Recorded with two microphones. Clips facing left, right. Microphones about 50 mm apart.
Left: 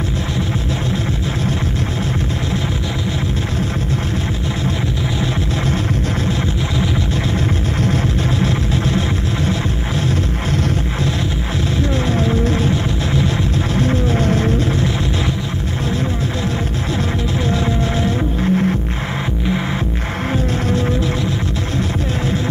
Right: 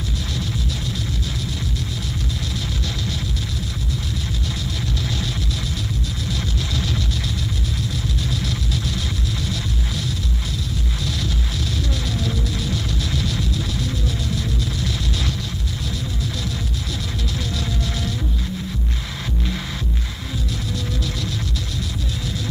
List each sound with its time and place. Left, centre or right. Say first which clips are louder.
8.4 s music: left 8 dB; left
12.1 s music: left 9 dB; left
18.0 s music: left 10 dB; left